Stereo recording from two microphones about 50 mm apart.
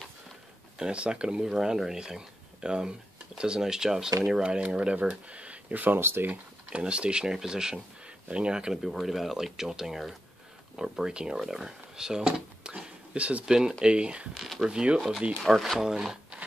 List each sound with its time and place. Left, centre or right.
0.7 s speech: centre; by 5.9 s right
5.9 s speech: right
6.7 s speech: right
8.8 s speech: centre
14.4 s speech: centre
15.4 s speech: centre
15.8 s speech: centre